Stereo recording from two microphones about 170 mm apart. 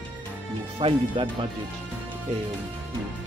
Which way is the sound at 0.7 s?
30° right (ahead or behind).